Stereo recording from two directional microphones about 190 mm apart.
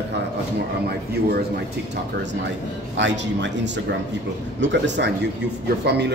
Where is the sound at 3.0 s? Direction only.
70° right (ahead or behind).